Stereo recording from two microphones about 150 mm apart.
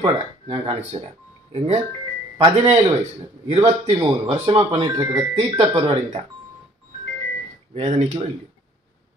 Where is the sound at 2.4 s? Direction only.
30° right (ahead or behind).